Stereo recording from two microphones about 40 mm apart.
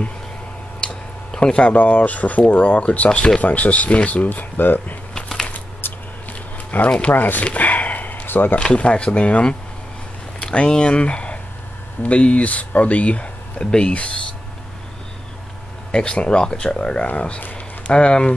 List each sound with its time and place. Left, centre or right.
1.4 s speech: left
1.8 s speech: left
6.9 s speech: left
7.2 s speech: left
7.4 s a sound: left
8.7 s speech: left
13.7 s speech: left
15.9 s speech: left